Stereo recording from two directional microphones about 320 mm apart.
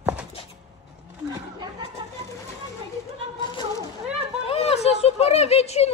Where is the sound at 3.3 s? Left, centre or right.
Centre.